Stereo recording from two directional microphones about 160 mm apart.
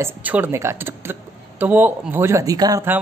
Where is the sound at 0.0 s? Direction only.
10° right (ahead or behind).